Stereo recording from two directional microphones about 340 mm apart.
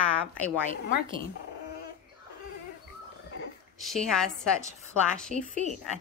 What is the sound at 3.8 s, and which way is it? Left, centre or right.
Speech, centre.